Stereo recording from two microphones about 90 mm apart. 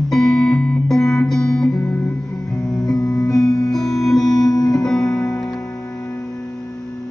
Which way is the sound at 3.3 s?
40° left (ahead or behind).